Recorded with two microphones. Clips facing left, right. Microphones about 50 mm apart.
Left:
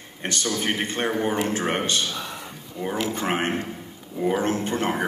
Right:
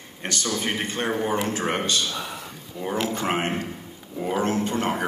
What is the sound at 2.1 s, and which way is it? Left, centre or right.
Speech, centre.